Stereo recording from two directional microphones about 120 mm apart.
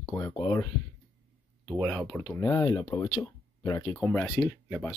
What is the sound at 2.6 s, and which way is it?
Speech, 35° left (ahead or behind).